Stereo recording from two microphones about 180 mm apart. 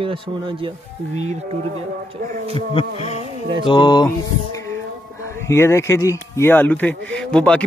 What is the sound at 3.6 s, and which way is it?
Mantra, 25° left (ahead or behind).